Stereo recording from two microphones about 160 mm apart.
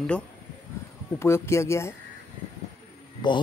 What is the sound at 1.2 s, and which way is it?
Speech, 15° left (ahead or behind).